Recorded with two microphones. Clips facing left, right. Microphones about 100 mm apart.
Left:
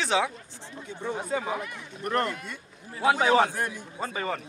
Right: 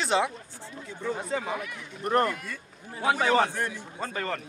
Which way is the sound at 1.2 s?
5° left (ahead or behind).